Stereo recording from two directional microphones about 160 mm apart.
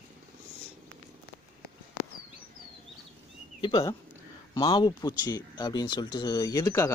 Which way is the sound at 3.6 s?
30° left (ahead or behind).